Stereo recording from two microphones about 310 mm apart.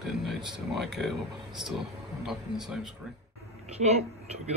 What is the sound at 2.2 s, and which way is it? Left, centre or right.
Speech, centre.